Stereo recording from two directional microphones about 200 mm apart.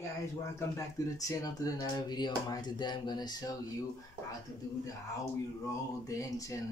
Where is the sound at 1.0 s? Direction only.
15° left (ahead or behind).